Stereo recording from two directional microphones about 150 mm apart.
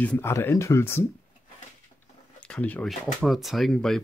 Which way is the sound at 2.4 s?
10° left (ahead or behind).